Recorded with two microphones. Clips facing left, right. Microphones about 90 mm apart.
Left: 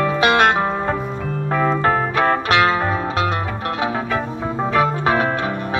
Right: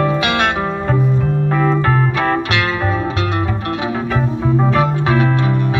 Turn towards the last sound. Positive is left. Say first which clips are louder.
# right 2 dB
turn(degrees=40)  # may be behind; listen again after turning